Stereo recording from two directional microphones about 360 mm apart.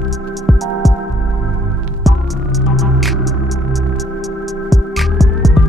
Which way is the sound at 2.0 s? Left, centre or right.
Centre.